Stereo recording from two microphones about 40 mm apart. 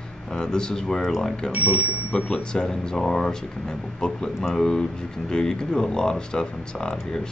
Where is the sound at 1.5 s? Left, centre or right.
Right.